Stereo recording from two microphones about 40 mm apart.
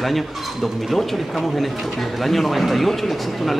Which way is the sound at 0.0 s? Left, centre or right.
Centre.